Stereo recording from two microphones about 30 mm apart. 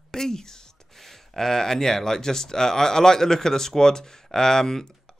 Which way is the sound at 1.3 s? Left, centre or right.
Centre.